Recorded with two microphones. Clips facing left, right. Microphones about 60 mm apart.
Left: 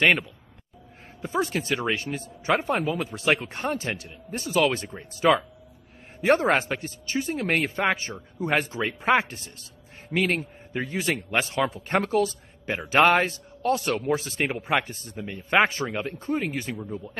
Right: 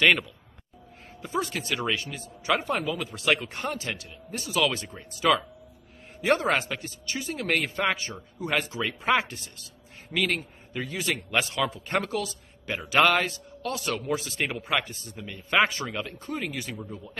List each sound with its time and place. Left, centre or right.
0.0 s speech: left
1.4 s speech: left